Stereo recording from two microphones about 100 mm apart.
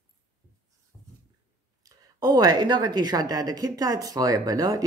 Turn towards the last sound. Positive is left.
turn(degrees=-35)  # may be behind; listen again after turning